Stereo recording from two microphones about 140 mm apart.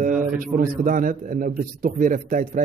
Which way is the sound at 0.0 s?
70° right (ahead or behind).